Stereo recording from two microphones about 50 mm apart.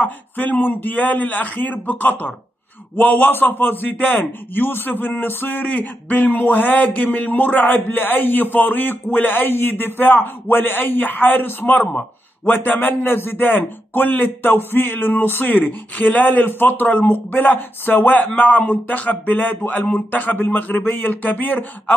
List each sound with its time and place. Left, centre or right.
0.0 s a man's voice: left